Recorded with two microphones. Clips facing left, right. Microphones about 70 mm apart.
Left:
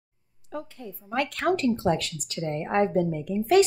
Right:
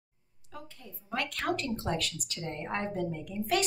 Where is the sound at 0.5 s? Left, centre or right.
Left.